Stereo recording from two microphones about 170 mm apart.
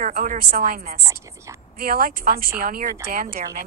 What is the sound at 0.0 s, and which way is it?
Speech, 50° right (ahead or behind).